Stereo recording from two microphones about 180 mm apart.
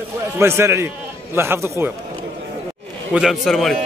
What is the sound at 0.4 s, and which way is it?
Speech, 15° right (ahead or behind).